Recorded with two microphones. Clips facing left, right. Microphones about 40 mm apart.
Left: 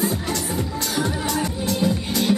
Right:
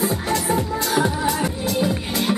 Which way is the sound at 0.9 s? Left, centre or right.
Centre.